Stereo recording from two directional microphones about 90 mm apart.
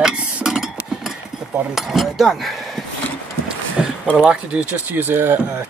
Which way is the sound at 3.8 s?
10° right (ahead or behind).